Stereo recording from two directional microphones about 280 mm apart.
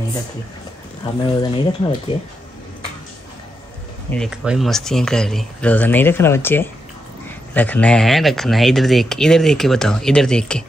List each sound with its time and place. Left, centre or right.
1.4 s speech: centre
4.1 s speech: centre